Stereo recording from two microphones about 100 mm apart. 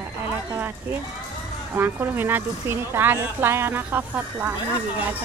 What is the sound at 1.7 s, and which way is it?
Speech, 20° right (ahead or behind).